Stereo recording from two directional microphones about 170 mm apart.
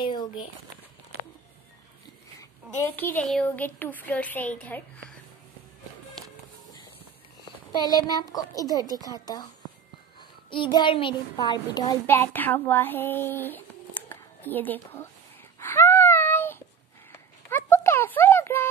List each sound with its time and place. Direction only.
0.0 s speech: 25° left (ahead or behind)
2.8 s a woman's voice: 10° left (ahead or behind)
7.8 s a child's voice: 20° left (ahead or behind)
10.5 s a child's voice: 30° left (ahead or behind)
12.1 s speech: 10° left (ahead or behind)
15.6 s a sound: 15° left (ahead or behind)